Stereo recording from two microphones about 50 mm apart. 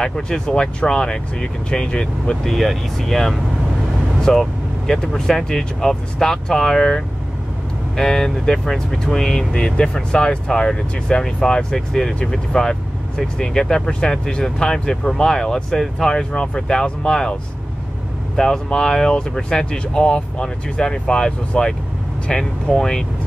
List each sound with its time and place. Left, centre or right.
0.0 s speech: centre
2.4 s speech: centre
4.2 s vehicle: centre
4.9 s speech: centre
18.3 s speech: centre